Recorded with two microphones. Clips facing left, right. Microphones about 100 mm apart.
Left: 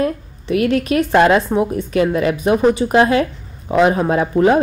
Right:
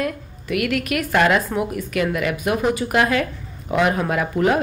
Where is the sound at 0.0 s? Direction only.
30° left (ahead or behind).